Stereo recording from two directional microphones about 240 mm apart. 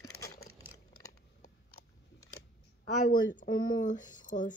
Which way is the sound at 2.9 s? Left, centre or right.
Left.